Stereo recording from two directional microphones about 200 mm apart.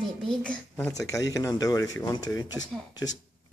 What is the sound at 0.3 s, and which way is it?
Speech, 5° left (ahead or behind).